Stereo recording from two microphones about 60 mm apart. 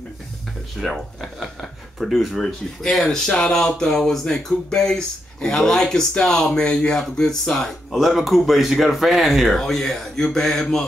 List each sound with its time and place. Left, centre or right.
0.7 s speech: centre